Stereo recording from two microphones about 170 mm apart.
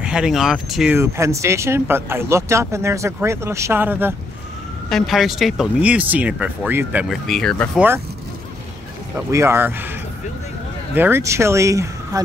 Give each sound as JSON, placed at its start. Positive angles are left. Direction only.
{"t": 0.0, "sound": "speech", "side_deg": -5}
{"t": 0.9, "sound": "speech", "side_deg": -15}
{"t": 4.8, "sound": "speech", "side_deg": 0}
{"t": 9.1, "sound": "speech", "side_deg": -15}
{"t": 11.0, "sound": "speech", "side_deg": -15}